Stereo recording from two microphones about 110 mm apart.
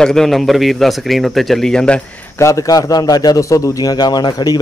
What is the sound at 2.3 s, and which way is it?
A man's voice, 30° left (ahead or behind).